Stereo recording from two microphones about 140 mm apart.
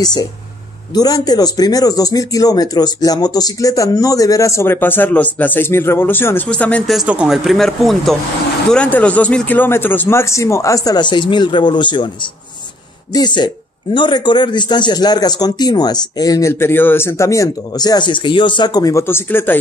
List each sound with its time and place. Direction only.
0.0 s speech: 25° left (ahead or behind); by 6.8 s 10° left (ahead or behind)
6.9 s speech: 5° right (ahead or behind); by 19.6 s 15° left (ahead or behind)